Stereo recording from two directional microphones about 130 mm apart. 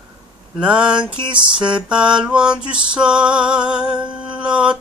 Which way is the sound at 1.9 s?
5° right (ahead or behind).